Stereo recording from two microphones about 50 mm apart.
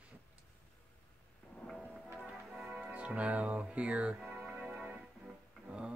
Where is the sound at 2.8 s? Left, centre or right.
Right.